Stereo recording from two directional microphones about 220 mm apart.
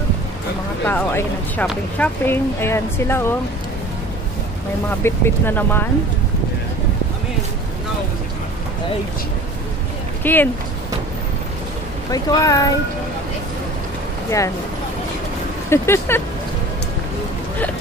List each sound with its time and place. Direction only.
0.8 s speech: 10° left (ahead or behind)
5.0 s speech: 10° left (ahead or behind)
10.2 s speech: 10° left (ahead or behind)
12.1 s speech: 15° left (ahead or behind)
15.7 s speech: 10° left (ahead or behind)